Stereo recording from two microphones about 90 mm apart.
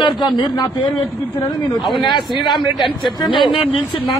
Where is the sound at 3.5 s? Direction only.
75° left (ahead or behind).